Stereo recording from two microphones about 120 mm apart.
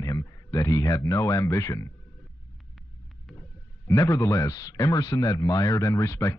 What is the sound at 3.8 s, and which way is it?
Speech, 30° left (ahead or behind).